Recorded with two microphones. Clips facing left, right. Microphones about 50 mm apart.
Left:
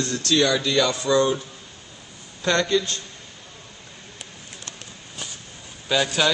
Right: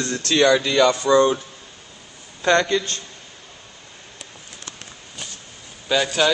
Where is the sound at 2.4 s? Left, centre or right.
Right.